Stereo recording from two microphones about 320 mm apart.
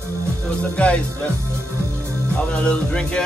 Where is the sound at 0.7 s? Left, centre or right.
Centre.